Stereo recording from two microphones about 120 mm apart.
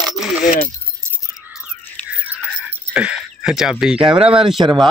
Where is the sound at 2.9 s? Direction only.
5° right (ahead or behind).